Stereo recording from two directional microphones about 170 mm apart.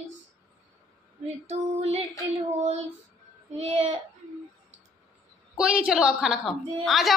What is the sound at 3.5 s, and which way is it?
Female singing, 40° right (ahead or behind).